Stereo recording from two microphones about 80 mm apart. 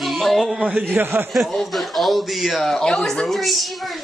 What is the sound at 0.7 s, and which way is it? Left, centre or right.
Speech, right.